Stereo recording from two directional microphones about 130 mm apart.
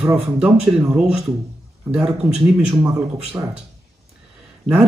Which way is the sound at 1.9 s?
5° right (ahead or behind).